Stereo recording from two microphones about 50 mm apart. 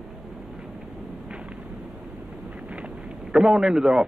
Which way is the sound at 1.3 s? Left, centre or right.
Right.